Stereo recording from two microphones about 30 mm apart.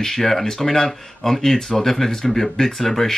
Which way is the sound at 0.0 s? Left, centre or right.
Centre.